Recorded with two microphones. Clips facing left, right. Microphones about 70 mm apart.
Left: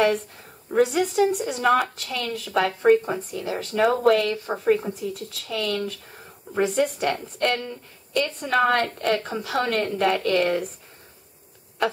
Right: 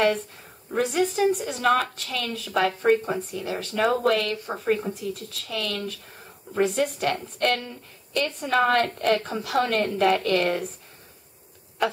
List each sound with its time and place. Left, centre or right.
0.7 s a woman's voice: centre